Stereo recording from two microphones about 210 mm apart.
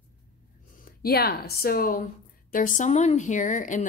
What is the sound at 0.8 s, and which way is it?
Speech, 45° left (ahead or behind).